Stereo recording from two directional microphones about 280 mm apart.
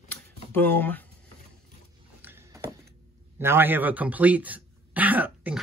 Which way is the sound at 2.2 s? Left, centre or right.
Centre.